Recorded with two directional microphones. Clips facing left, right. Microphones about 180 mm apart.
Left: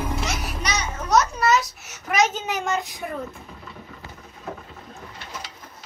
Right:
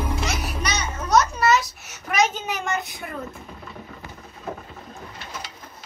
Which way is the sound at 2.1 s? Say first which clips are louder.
Left 1 dB; centre (ahead or behind).